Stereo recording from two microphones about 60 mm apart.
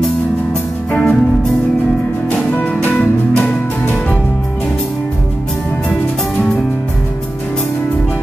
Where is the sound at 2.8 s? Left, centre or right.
Left.